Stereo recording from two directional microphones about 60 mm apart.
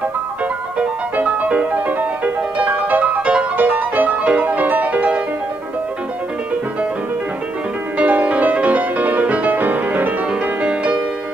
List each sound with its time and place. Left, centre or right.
1.1 s music: right
8.0 s music: right